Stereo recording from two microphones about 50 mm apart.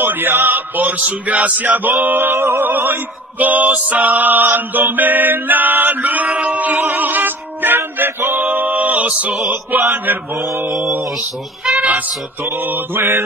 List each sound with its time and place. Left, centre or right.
0.0 s music: right
1.0 s male singing: right
6.4 s music: right
11.6 s speech: right
12.4 s male singing: right